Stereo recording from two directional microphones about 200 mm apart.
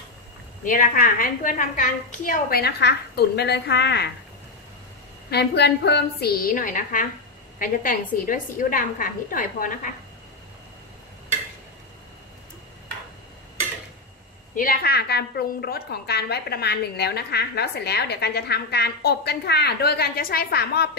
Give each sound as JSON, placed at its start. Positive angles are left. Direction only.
{"t": 0.7, "sound": "a woman's voice", "side_deg": 45}
{"t": 5.3, "sound": "a woman's voice", "side_deg": 55}
{"t": 14.5, "sound": "a woman's voice", "side_deg": 45}